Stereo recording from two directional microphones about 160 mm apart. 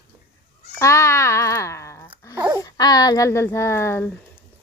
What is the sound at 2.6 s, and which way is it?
Speech, 25° left (ahead or behind).